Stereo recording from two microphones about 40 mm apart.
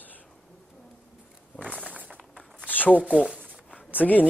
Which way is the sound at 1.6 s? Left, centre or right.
Left.